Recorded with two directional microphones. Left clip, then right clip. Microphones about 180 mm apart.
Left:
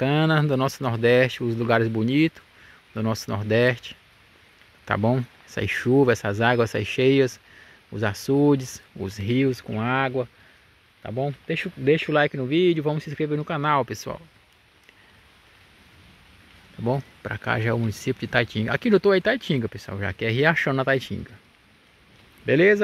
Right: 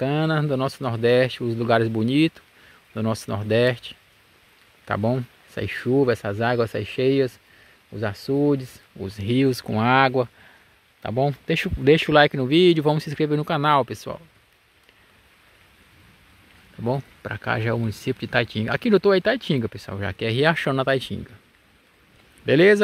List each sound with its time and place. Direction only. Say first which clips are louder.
0.0 s speech: left 1 dB; centre (ahead or behind)
9.2 s speech: right 2 dB; 10° right (ahead or behind)
16.8 s speech: even; centre (ahead or behind)
22.4 s speech: right 2 dB; 15° right (ahead or behind)